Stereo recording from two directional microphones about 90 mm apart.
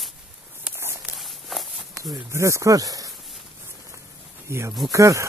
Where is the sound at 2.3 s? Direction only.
35° right (ahead or behind).